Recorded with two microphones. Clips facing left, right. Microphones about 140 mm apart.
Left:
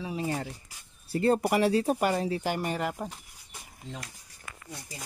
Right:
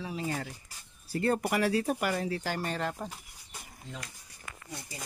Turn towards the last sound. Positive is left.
turn(degrees=10)  # may be behind; listen again after turning